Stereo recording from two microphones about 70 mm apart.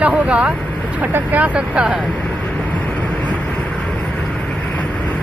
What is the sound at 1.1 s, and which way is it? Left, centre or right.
Speech, right.